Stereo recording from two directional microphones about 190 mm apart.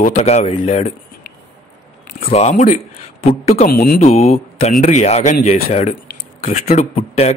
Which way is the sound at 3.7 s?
50° left (ahead or behind).